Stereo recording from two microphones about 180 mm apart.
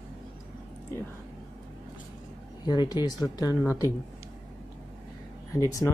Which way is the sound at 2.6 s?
25° left (ahead or behind).